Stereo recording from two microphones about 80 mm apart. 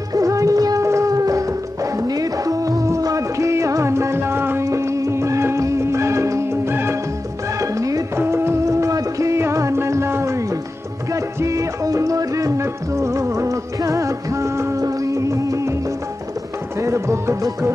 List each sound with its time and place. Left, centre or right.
0.1 s music: right
7.6 s music: right
8.2 s music: right
16.8 s music: right